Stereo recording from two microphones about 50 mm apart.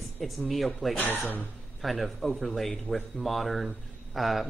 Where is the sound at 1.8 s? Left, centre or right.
Centre.